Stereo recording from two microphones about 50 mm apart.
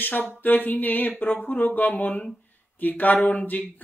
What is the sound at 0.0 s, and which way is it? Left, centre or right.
Speech, left.